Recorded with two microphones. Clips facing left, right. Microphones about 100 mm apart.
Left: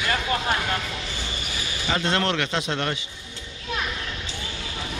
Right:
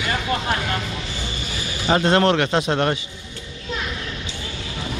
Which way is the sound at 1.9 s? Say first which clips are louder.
Right 7 dB; 40° right (ahead or behind).